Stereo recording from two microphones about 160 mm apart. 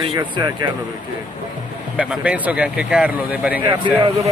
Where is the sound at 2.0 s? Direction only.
5° right (ahead or behind).